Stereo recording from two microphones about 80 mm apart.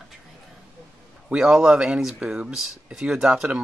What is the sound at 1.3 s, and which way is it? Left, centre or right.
Speech, centre.